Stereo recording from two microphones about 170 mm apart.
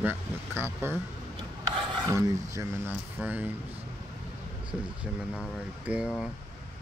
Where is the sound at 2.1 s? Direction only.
20° right (ahead or behind).